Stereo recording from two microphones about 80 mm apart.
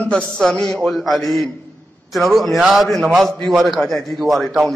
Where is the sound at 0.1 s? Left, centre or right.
Centre.